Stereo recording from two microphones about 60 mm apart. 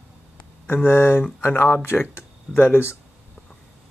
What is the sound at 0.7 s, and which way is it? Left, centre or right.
Speech, left.